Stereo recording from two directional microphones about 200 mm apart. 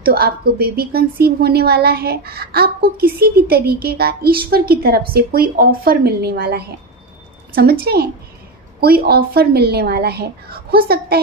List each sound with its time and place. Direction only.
0.0 s a woman's voice: 50° right (ahead or behind)
7.8 s a woman's voice: 55° right (ahead or behind)